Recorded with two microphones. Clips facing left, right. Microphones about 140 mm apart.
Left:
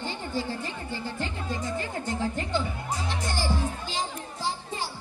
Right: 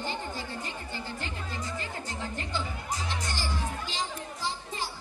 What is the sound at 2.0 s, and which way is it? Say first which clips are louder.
Music: left 7 dB; 25° left (ahead or behind).